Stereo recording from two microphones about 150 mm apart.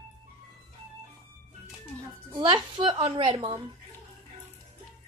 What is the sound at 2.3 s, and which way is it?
A child's voice, 30° right (ahead or behind).